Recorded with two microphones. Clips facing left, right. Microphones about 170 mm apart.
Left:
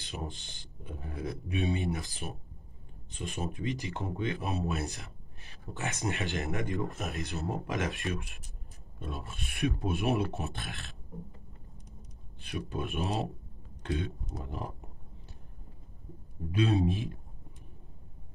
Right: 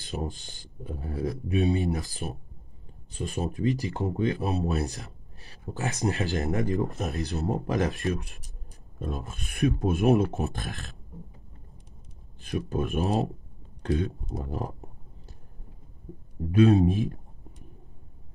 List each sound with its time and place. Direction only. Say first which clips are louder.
0.0 s speech: right 6 dB; 40° right (ahead or behind)
12.4 s speech: right 7 dB; 40° right (ahead or behind)
16.5 s speech: right 8 dB; 40° right (ahead or behind)